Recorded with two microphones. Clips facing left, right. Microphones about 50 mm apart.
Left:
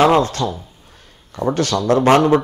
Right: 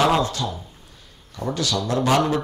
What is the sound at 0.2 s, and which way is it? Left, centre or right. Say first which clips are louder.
Speech: left 5 dB; left.